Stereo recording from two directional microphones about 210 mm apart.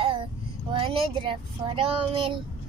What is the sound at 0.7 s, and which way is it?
A woman's voice, 25° right (ahead or behind).